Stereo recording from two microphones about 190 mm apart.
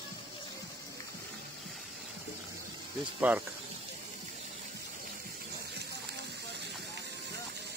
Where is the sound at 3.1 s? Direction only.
5° right (ahead or behind).